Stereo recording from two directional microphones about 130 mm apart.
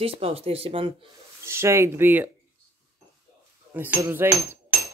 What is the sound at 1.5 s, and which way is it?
Speech, 20° right (ahead or behind).